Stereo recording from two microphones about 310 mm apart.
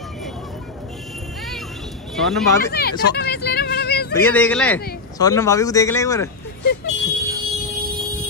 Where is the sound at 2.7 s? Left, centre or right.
Left.